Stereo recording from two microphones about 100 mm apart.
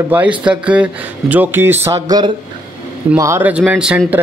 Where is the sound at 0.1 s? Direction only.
15° right (ahead or behind).